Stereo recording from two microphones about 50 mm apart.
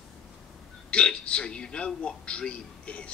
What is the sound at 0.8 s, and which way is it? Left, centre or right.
A man's voice, left.